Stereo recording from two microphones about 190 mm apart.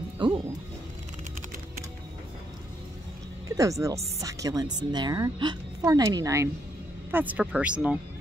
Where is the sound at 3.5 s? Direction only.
15° right (ahead or behind).